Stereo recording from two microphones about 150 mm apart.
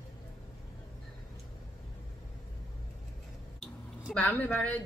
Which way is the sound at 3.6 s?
10° left (ahead or behind).